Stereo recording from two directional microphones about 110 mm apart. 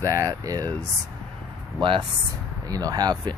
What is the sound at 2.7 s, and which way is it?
Speech, 35° right (ahead or behind).